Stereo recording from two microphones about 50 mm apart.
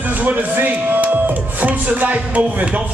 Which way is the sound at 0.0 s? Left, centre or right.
Right.